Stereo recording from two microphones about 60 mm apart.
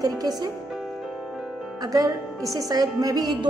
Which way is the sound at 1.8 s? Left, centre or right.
Right.